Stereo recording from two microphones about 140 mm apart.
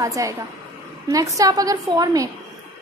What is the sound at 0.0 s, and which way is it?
A woman's voice, 25° right (ahead or behind).